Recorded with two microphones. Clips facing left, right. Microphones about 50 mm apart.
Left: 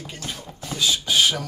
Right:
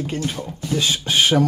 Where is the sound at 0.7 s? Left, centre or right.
Right.